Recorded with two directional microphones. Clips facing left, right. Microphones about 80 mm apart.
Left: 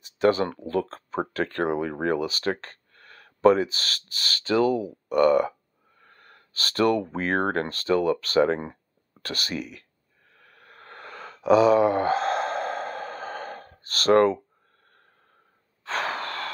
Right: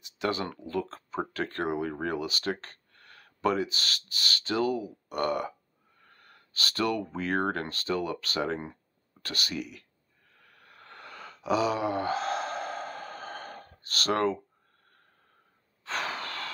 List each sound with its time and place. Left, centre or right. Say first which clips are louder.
0.2 s speech: left 9 dB; left
2.1 s a sound: left 5 dB; left
3.3 s speech: left 9 dB; left
6.0 s speech: left 4 dB; left
10.3 s a sound: left 5 dB; left
15.8 s breathing: left 5 dB; left